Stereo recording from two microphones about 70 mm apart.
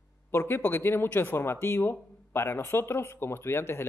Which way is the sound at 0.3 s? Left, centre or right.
Left.